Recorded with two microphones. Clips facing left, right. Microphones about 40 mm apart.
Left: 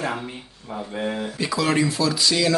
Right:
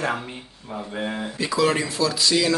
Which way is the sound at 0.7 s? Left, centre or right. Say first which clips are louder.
Left 1 dB; centre.